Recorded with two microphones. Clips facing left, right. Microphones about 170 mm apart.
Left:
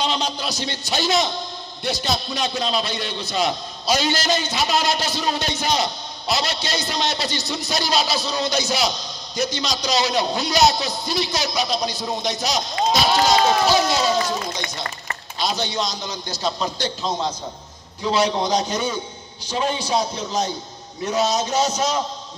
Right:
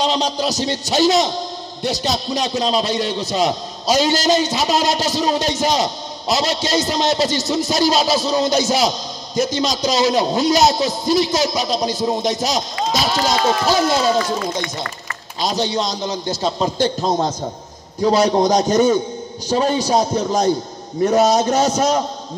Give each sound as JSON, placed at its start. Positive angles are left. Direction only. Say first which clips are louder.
{"t": 0.0, "sound": "a man's voice", "louder": "right 5 dB", "side_deg": -40}
{"t": 15.4, "sound": "a man's voice", "louder": "right 4 dB", "side_deg": -40}
{"t": 16.7, "sound": "a man's voice", "louder": "right 7 dB", "side_deg": -45}